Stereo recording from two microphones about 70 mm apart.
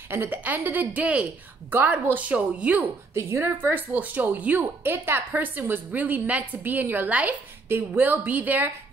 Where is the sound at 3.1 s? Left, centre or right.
Right.